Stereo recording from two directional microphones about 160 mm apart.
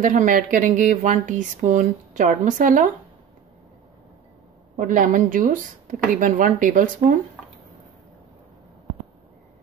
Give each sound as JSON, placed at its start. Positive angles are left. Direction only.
{"t": 0.0, "sound": "speech", "side_deg": -55}
{"t": 4.7, "sound": "speech", "side_deg": -55}